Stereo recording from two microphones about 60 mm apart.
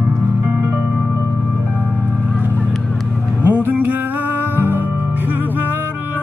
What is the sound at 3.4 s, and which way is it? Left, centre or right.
Music, right.